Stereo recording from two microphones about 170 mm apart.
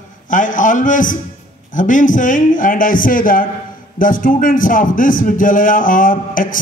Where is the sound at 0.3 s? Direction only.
50° left (ahead or behind).